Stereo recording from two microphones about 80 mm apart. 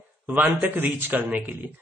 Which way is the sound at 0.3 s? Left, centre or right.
Centre.